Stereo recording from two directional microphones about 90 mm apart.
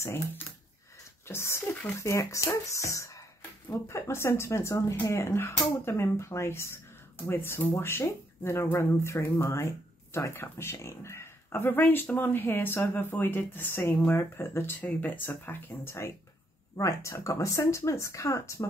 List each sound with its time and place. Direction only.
0.0 s speech: 30° left (ahead or behind)